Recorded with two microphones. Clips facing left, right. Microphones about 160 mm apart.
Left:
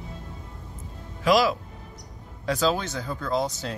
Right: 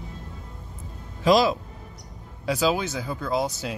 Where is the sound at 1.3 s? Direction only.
25° right (ahead or behind).